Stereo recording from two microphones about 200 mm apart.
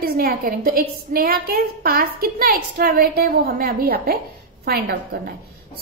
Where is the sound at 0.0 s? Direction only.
50° right (ahead or behind).